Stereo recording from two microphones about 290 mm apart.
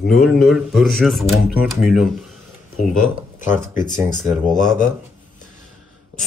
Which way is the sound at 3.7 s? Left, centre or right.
Left.